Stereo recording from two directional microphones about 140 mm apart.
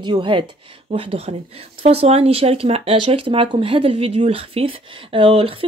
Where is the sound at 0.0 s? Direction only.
35° right (ahead or behind).